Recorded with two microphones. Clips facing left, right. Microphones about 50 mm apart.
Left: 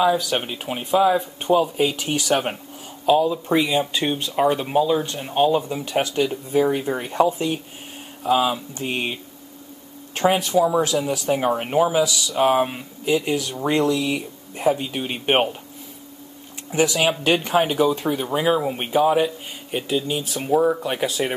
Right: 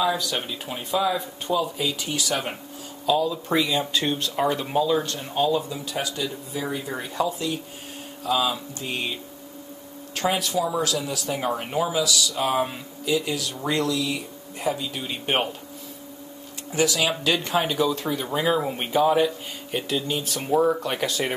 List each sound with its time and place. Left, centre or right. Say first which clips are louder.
0.1 s speech: left 5 dB; left
0.5 s speech: left 5 dB; left
3.1 s speech: left 5 dB; left
5.3 s speech: left 4 dB; left
7.1 s speech: left 6 dB; left
8.2 s speech: left 4 dB; left
10.1 s speech: left 6 dB; left
16.7 s speech: left 3 dB; left; by 21.4 s centre